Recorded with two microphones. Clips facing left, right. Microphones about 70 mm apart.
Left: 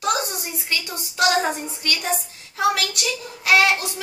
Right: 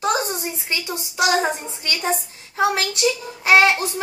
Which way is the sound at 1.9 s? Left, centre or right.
Right.